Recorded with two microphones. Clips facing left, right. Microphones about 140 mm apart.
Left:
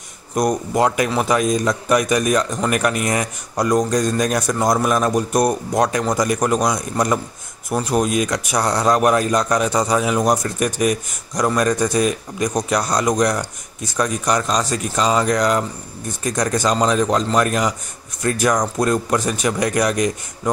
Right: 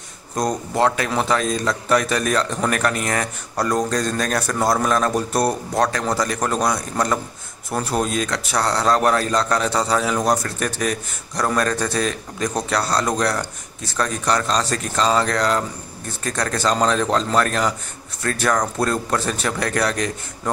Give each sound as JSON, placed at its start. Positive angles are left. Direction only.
{"t": 0.4, "sound": "a man's voice", "side_deg": 15}